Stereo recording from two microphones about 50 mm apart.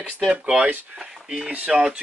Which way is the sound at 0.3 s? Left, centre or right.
Right.